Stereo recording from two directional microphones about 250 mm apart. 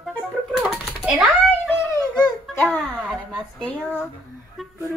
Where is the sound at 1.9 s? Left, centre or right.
Centre.